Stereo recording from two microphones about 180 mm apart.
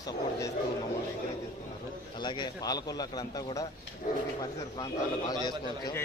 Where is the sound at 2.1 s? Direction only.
25° left (ahead or behind).